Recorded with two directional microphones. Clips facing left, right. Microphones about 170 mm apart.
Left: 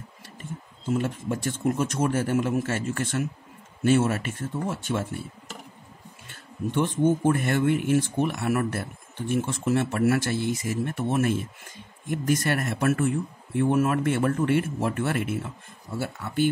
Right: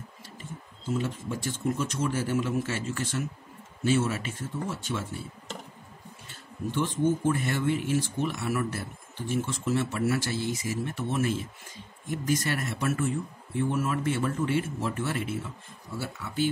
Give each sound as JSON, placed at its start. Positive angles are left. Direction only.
{"t": 0.9, "sound": "speech", "side_deg": 55}
{"t": 6.7, "sound": "speech", "side_deg": 55}